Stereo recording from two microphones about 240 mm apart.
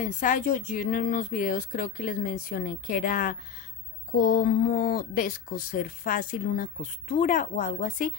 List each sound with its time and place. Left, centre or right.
0.0 s speech: left